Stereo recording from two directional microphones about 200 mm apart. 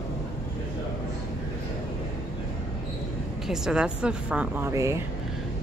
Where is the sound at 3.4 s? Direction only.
5° right (ahead or behind).